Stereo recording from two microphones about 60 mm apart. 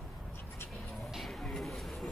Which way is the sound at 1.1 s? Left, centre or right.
Centre.